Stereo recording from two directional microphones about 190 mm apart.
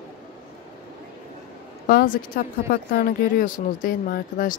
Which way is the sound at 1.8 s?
50° left (ahead or behind).